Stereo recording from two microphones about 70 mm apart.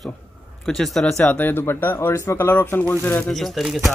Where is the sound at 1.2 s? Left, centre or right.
Left.